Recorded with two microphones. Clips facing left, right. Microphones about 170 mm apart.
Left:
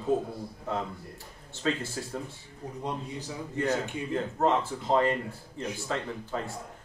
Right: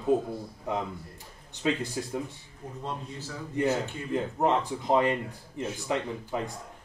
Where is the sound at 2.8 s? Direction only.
15° left (ahead or behind).